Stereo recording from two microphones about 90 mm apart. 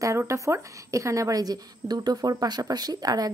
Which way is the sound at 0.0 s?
35° right (ahead or behind).